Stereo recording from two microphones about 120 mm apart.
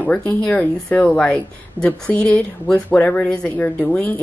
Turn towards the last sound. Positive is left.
turn(degrees=10)  # may be behind; listen again after turning